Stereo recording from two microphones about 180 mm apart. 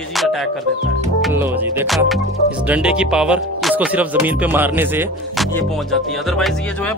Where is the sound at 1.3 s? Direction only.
10° right (ahead or behind).